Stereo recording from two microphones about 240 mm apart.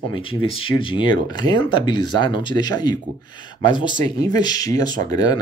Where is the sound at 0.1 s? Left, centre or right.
Left.